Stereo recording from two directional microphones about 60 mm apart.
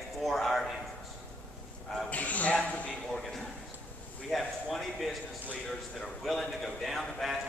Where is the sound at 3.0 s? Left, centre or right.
Centre.